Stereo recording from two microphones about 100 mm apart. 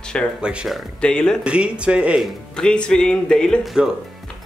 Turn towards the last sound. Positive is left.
turn(degrees=5)  # may be behind; listen again after turning